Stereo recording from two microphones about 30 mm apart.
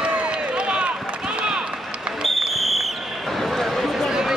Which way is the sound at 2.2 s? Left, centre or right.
Centre.